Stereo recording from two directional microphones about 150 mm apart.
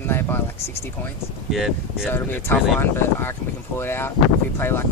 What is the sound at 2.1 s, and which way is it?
Speech, 15° left (ahead or behind).